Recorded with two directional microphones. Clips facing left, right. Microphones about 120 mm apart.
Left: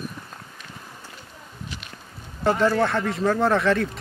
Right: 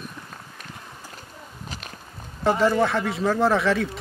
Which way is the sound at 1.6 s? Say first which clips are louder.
Even; 40° right (ahead or behind).